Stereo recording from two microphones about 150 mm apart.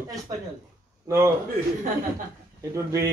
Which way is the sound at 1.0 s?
20° right (ahead or behind).